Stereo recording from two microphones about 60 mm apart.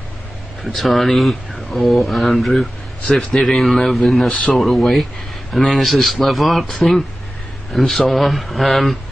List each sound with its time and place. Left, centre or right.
0.6 s a man's voice: centre
4.3 s speech: centre
4.6 s a man's voice: centre